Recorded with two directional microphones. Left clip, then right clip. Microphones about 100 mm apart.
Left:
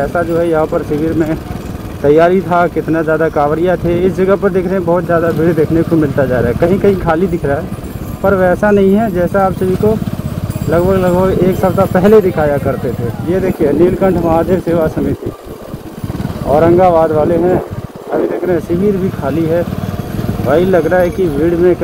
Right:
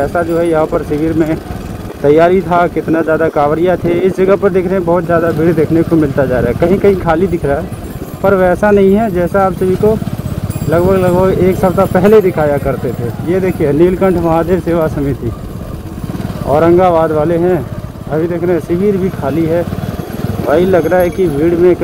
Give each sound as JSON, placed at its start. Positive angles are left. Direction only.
{"t": 0.0, "sound": "speech", "side_deg": -10}
{"t": 12.1, "sound": "speech", "side_deg": 0}
{"t": 12.4, "sound": "speech", "side_deg": -15}
{"t": 16.4, "sound": "speech", "side_deg": -15}
{"t": 18.7, "sound": "speech", "side_deg": -15}
{"t": 20.4, "sound": "speech", "side_deg": -10}